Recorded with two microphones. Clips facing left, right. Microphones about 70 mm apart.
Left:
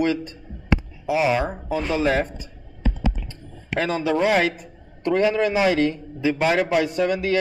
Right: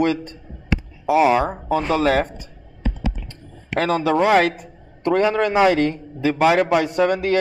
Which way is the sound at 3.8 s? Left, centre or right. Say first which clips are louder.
Right 3 dB; right.